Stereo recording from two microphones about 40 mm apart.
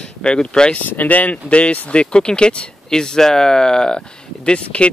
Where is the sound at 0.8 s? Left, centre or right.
Left.